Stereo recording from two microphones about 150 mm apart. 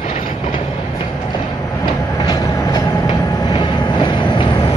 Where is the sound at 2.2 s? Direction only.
30° left (ahead or behind).